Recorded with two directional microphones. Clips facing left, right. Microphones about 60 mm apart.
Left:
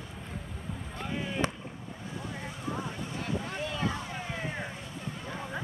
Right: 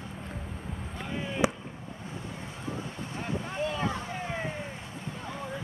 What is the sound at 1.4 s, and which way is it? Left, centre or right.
Chop, centre.